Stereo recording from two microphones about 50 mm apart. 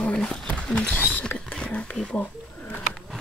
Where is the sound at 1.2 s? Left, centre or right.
Left.